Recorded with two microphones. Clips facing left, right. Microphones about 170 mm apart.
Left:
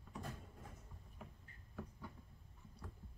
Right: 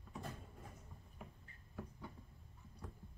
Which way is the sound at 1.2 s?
15° right (ahead or behind).